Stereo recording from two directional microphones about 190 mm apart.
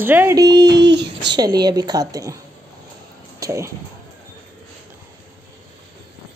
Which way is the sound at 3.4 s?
15° right (ahead or behind).